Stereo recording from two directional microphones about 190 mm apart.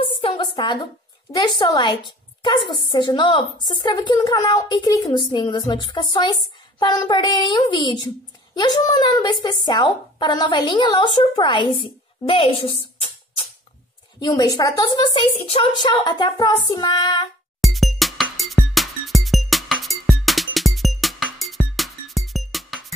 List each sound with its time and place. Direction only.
0.0 s a sound: 25° left (ahead or behind)
1.3 s speech: 20° left (ahead or behind)
14.2 s speech: 20° left (ahead or behind)
17.6 s music: centre (ahead or behind)